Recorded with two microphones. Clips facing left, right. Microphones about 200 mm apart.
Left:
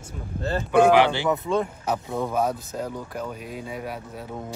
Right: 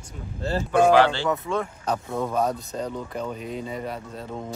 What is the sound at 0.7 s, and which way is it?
Speech, 15° left (ahead or behind).